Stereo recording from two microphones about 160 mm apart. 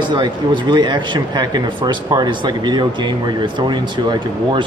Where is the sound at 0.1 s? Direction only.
30° right (ahead or behind).